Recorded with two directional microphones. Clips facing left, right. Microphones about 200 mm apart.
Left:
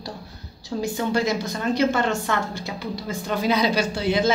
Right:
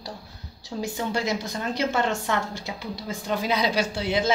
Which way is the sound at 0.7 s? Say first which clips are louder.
Left 4 dB; 10° right (ahead or behind).